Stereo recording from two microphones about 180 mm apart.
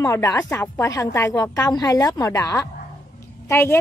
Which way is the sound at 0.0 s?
20° left (ahead or behind).